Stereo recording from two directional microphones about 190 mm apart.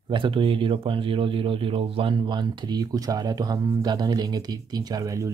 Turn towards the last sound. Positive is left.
turn(degrees=-15)  # may be behind; listen again after turning